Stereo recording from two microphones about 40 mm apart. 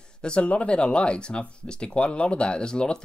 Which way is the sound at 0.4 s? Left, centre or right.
Left.